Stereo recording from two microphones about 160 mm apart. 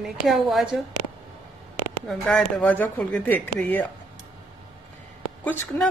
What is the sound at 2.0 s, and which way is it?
Speech, 10° left (ahead or behind).